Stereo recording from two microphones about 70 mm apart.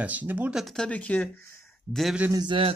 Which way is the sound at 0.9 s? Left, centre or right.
Left.